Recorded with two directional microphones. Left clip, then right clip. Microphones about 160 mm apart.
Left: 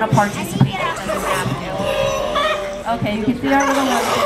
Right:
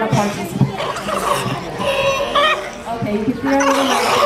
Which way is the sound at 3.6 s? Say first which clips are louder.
Right 2 dB; 20° right (ahead or behind).